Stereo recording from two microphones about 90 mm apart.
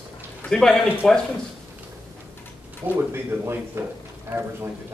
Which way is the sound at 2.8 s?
25° right (ahead or behind).